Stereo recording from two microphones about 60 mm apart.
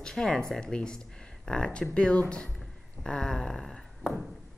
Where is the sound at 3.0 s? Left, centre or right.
Centre.